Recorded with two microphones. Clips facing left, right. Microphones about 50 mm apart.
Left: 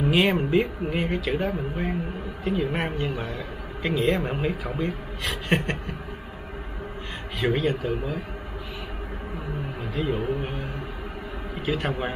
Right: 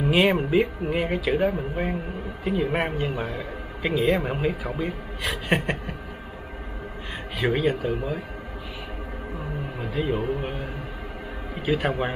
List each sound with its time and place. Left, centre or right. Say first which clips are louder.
0.1 s a man's voice: right 2 dB; centre
7.3 s speech: right 1 dB; centre
9.8 s speech: right 2 dB; centre
11.6 s speech: right 3 dB; centre